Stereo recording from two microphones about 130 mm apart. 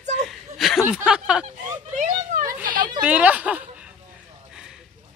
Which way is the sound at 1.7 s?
70° right (ahead or behind).